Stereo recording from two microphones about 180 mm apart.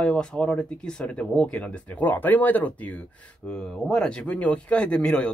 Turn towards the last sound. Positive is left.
turn(degrees=5)  # may be behind; listen again after turning